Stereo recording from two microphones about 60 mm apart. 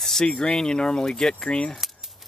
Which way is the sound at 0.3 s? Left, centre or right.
Centre.